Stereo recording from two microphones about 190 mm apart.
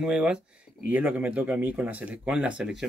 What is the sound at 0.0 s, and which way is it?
Speech, 5° right (ahead or behind).